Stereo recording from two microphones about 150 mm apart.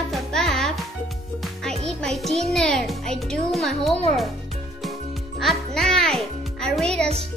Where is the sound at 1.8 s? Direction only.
Centre (ahead or behind).